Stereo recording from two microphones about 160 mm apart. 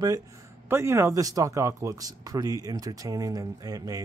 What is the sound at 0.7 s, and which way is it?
A man's voice, 15° right (ahead or behind).